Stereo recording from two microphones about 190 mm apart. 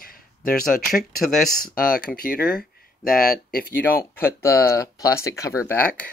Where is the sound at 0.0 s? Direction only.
50° left (ahead or behind).